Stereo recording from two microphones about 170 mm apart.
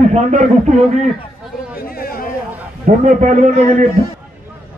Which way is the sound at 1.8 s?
60° left (ahead or behind).